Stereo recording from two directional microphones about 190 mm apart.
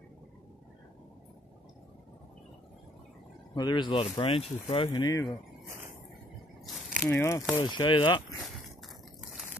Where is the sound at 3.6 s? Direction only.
25° left (ahead or behind).